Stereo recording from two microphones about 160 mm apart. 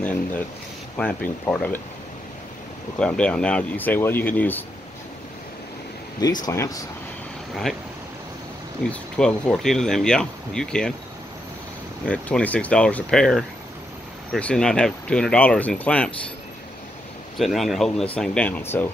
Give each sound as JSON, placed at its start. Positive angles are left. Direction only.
{"t": 0.0, "sound": "speech", "side_deg": 10}
{"t": 3.0, "sound": "speech", "side_deg": 10}
{"t": 6.4, "sound": "speech", "side_deg": 20}
{"t": 8.8, "sound": "speech", "side_deg": 5}
{"t": 12.1, "sound": "speech", "side_deg": 10}
{"t": 17.4, "sound": "speech", "side_deg": 0}